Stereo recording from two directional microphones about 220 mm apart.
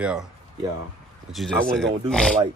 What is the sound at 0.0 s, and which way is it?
Speech, 5° right (ahead or behind).